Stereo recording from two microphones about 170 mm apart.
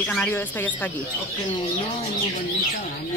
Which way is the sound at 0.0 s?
10° left (ahead or behind).